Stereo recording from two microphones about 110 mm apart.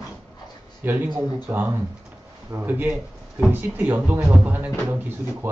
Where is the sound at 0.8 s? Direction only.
15° right (ahead or behind).